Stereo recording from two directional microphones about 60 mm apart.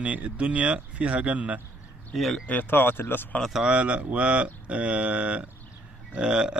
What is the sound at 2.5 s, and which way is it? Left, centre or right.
Speech, left.